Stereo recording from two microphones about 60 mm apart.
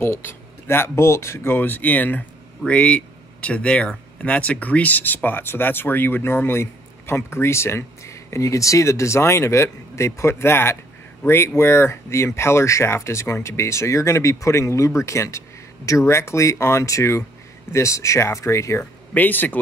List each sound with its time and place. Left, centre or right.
0.0 s speech: left
16.1 s speech: left
18.8 s speech: left